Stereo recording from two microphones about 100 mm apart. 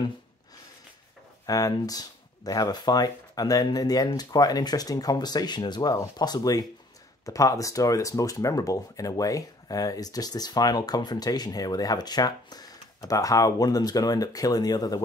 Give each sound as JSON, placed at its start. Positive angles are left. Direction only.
{"t": 1.4, "sound": "speech", "side_deg": 40}